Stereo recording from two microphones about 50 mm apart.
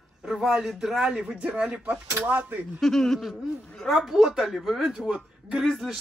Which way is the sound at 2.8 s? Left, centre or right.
Centre.